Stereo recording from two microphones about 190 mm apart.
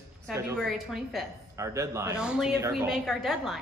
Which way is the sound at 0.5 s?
Centre (ahead or behind).